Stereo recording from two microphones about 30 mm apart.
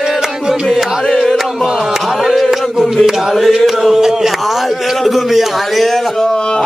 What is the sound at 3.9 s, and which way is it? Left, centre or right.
Mantra, centre.